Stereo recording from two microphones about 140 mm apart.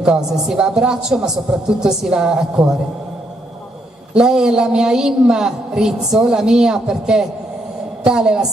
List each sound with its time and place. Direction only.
0.0 s a woman's voice: 5° right (ahead or behind)
4.1 s a woman's voice: 5° right (ahead or behind)